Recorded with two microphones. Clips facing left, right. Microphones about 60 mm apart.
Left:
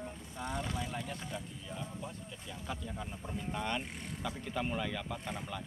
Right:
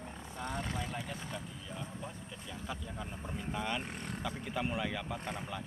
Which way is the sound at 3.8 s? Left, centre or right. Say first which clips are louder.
Right 2 dB; right.